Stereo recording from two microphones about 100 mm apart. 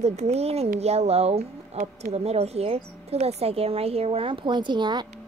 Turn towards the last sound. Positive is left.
turn(degrees=-50)  # may be behind; listen again after turning